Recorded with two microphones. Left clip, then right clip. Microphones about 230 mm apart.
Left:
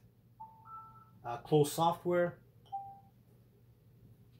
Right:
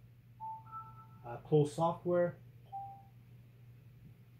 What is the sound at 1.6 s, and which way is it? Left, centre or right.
Speech, left.